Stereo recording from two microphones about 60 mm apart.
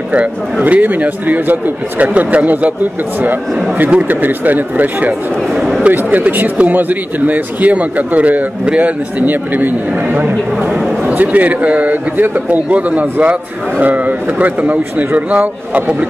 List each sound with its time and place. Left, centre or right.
0.1 s speech: right
5.5 s a sound: centre
5.9 s speech: right